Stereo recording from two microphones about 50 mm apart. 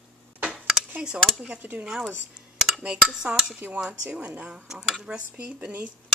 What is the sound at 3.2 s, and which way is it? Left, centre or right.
Speech, right.